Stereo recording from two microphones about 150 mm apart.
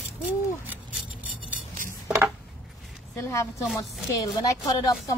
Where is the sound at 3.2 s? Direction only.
20° left (ahead or behind).